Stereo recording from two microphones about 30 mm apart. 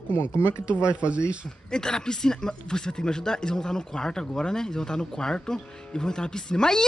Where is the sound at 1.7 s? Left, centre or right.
Left.